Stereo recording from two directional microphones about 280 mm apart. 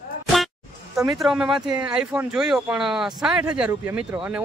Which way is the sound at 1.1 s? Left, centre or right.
Centre.